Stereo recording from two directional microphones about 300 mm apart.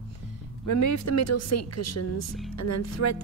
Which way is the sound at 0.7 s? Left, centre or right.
Left.